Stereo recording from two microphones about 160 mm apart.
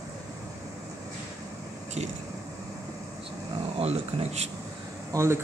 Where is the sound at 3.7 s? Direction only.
40° right (ahead or behind).